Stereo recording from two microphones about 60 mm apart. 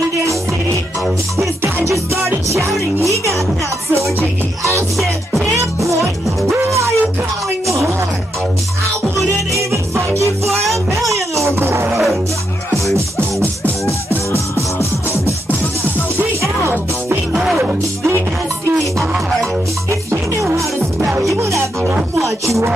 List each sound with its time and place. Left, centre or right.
1.9 s music: right
4.9 s music: centre
6.6 s music: right
7.6 s a sound: right
9.3 s music: right
11.9 s music: centre
12.9 s music: right
17.3 s music: centre
19.9 s music: right
22.2 s music: right